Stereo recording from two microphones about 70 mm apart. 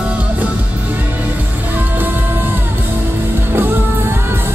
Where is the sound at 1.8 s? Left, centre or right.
Right.